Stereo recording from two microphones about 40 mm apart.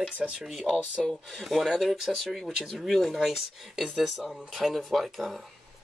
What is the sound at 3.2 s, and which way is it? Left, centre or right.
Speech, centre.